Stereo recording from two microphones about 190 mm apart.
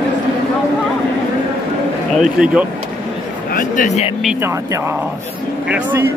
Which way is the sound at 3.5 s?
45° left (ahead or behind).